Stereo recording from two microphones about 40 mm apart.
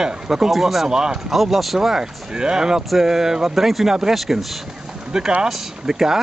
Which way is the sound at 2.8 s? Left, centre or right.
Centre.